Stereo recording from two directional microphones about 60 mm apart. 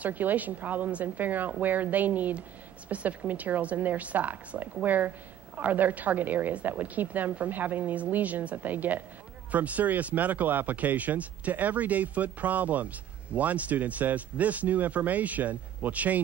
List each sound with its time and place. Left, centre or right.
0.0 s speech: right